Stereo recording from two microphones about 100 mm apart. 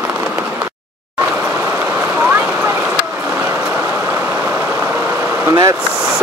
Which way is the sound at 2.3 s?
20° right (ahead or behind).